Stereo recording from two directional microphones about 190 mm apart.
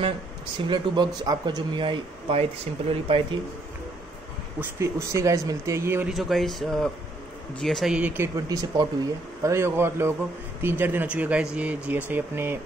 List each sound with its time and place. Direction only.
0.7 s speech: 20° right (ahead or behind)
4.6 s speech: 15° right (ahead or behind)
6.1 s speech: centre (ahead or behind)